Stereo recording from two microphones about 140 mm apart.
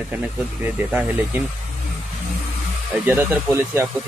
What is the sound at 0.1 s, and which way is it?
Speech, 10° right (ahead or behind).